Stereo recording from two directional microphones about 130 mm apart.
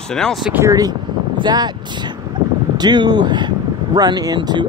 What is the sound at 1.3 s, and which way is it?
Speech, 35° right (ahead or behind).